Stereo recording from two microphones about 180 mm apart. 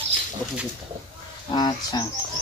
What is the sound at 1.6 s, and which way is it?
Speech, 25° left (ahead or behind).